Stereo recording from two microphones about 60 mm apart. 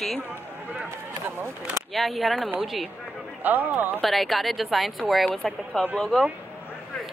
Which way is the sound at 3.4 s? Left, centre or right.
Right.